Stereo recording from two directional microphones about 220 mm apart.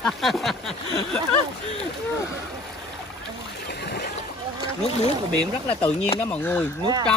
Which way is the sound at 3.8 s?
50° left (ahead or behind).